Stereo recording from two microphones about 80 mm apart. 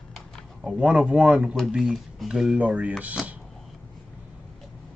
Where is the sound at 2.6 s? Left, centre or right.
Centre.